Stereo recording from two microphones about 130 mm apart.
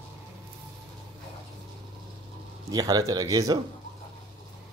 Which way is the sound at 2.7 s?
30° right (ahead or behind).